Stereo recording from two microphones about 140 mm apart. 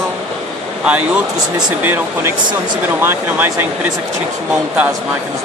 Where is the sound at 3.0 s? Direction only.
15° right (ahead or behind).